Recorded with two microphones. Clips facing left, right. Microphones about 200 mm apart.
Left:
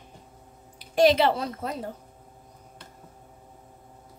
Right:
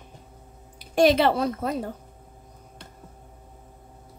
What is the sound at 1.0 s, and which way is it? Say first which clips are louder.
Speech: right 1 dB; 55° right (ahead or behind).